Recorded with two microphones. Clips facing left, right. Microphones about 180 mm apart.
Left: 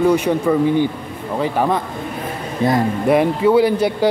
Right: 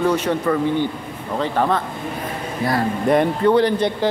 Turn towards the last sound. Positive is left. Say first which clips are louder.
# left 3 dB
turn(degrees=10)  # may be behind; listen again after turning